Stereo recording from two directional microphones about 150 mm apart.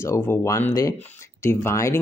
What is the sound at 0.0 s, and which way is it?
Speech, 15° left (ahead or behind).